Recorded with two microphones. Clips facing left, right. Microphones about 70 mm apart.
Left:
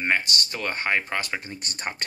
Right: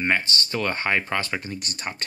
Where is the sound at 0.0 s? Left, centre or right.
Centre.